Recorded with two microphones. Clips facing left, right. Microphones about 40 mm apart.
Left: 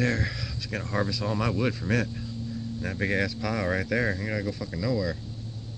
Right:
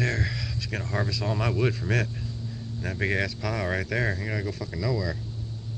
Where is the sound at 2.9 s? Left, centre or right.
Right.